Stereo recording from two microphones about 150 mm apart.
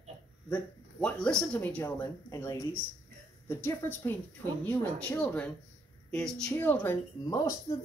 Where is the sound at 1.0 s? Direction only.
5° left (ahead or behind).